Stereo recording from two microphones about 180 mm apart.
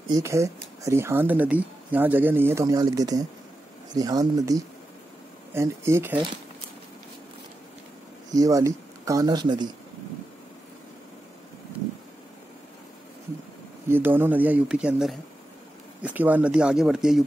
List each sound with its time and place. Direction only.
0.1 s speech: 15° right (ahead or behind)
8.3 s speech: 20° right (ahead or behind)
13.8 s speech: 10° right (ahead or behind)